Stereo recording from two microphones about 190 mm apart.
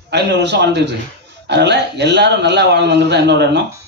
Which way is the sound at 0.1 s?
65° right (ahead or behind).